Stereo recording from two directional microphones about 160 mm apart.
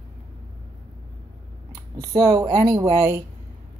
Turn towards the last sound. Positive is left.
turn(degrees=-20)  # may be behind; listen again after turning